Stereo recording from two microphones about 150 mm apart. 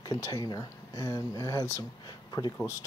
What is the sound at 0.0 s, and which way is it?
Speech, 25° left (ahead or behind).